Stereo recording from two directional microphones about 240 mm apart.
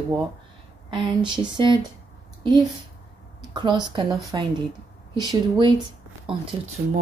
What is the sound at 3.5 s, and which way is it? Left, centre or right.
Speech, centre.